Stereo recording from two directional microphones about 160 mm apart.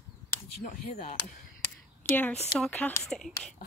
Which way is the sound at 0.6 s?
50° left (ahead or behind).